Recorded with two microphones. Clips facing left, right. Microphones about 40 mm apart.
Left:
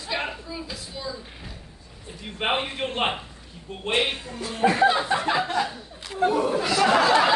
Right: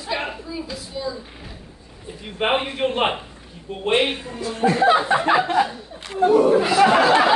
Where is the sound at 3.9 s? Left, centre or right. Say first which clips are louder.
Right 4 dB; right.